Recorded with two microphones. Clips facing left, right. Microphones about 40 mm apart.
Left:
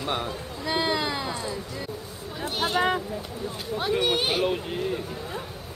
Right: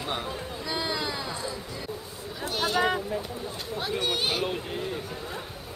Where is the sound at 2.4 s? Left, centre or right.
Left.